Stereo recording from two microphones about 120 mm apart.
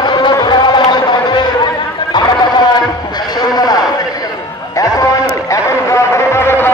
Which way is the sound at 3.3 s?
35° left (ahead or behind).